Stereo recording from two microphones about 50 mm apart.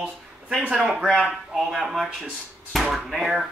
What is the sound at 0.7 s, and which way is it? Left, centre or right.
Speech, centre.